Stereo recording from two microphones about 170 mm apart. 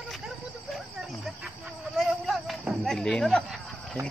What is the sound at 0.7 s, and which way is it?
Cricket, centre (ahead or behind).